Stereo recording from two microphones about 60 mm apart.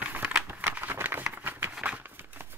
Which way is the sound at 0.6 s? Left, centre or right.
Right.